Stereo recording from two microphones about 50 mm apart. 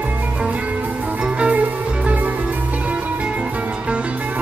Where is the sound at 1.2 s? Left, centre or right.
Right.